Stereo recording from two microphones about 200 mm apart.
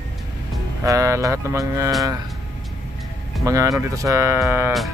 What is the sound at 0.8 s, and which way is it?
Speech, 15° right (ahead or behind).